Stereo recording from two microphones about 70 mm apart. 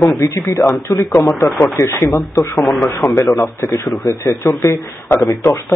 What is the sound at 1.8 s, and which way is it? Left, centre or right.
Speech, left.